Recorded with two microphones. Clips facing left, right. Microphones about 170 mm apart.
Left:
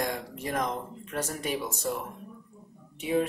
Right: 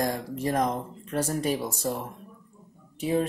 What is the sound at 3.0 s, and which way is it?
Speech, 35° right (ahead or behind).